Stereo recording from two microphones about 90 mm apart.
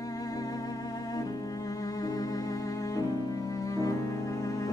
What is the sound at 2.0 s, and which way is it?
Cello, 40° left (ahead or behind).